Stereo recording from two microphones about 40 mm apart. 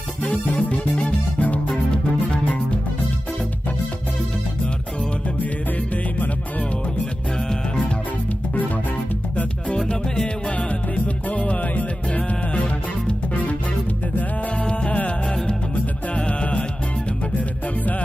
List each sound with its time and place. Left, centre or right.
0.2 s music: left
11.2 s music: left
16.3 s music: left